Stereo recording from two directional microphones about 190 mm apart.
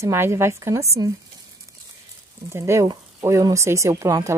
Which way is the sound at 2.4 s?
15° right (ahead or behind).